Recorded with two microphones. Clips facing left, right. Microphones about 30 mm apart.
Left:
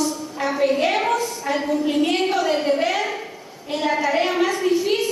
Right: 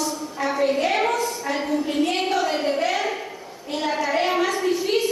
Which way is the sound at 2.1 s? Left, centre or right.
Centre.